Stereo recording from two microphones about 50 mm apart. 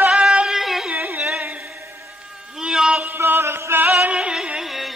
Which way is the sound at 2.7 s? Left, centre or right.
Centre.